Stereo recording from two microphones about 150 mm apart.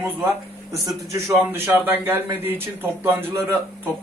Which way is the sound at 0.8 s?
20° right (ahead or behind).